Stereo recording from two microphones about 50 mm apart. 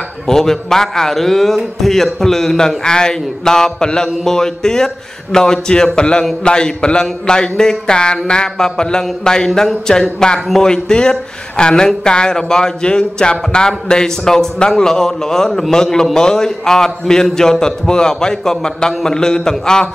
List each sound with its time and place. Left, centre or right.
0.3 s a man's voice: centre